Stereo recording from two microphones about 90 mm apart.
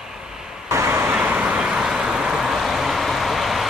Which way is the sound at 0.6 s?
30° right (ahead or behind).